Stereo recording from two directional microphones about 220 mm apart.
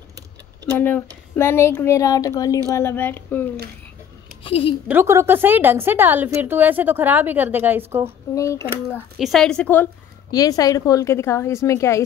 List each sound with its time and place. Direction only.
0.7 s speech: 10° left (ahead or behind)
4.5 s a woman's voice: 25° left (ahead or behind)
4.8 s a woman's voice: 10° right (ahead or behind)
8.4 s speech: 15° left (ahead or behind)
9.2 s a woman's voice: centre (ahead or behind)
10.3 s speech: 15° left (ahead or behind)